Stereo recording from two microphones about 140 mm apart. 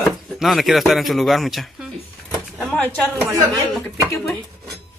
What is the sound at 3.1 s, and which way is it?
Speech, 15° right (ahead or behind).